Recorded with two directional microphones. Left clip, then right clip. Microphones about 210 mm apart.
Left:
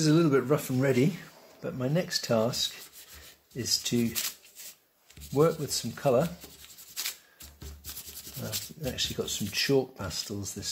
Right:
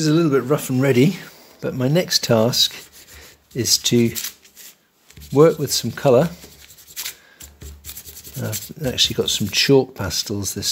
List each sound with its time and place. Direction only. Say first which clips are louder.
0.0 s speech: right 7 dB; 10° right (ahead or behind); by 4.1 s 50° right (ahead or behind)
5.3 s speech: right 11 dB; 50° right (ahead or behind)
8.8 s speech: right 14 dB; 50° right (ahead or behind)